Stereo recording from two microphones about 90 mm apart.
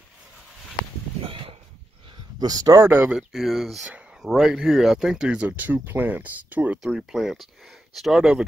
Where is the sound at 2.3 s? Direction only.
45° right (ahead or behind).